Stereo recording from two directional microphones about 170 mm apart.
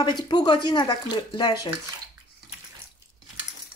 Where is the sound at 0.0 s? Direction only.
25° left (ahead or behind).